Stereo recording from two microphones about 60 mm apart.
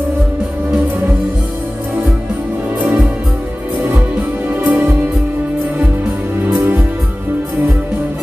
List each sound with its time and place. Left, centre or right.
2.8 s music: right
4.5 s music: right
6.4 s music: right